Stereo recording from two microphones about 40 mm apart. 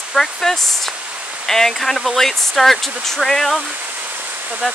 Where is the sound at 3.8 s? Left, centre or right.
Right.